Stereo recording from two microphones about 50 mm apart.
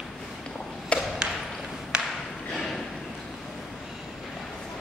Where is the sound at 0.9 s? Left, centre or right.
Left.